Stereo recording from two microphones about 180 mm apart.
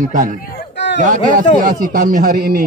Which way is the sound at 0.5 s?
75° left (ahead or behind).